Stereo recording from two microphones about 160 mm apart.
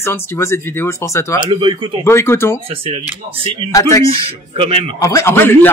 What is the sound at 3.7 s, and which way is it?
Speech, 20° left (ahead or behind).